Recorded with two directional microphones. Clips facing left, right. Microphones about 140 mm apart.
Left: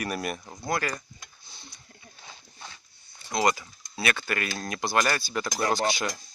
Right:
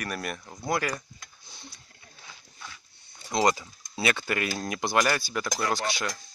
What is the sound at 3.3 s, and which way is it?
Speech, 20° right (ahead or behind).